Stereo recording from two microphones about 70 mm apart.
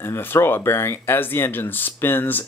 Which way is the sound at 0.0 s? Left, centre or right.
Left.